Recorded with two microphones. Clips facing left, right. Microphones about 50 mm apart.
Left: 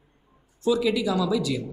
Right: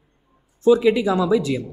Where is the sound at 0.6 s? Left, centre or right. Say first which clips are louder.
Right 7 dB; right.